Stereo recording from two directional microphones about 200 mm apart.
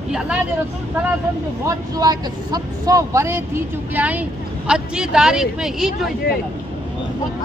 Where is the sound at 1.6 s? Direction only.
20° right (ahead or behind); by 6.1 s centre (ahead or behind).